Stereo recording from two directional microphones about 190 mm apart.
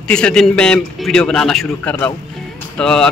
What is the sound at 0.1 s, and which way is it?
A man's voice, 5° left (ahead or behind).